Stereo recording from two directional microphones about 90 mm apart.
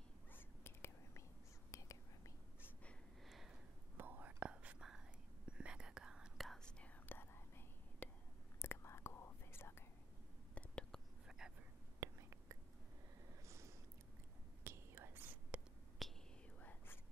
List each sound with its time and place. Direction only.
0.3 s whispering: 25° left (ahead or behind)
3.3 s a sound: centre (ahead or behind)
3.9 s whispering: 20° right (ahead or behind); by 6.7 s centre (ahead or behind)
6.8 s whispering: 25° left (ahead or behind)
10.5 s whispering: 10° left (ahead or behind)
11.2 s whispering: 5° right (ahead or behind)
12.0 s whispering: 30° right (ahead or behind)
13.5 s a sound: 35° right (ahead or behind)
14.6 s whispering: 25° right (ahead or behind)
16.0 s whispering: centre (ahead or behind)
16.5 s whispering: 20° left (ahead or behind)